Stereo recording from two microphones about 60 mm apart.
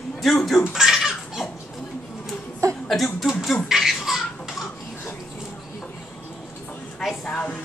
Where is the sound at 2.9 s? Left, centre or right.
Centre.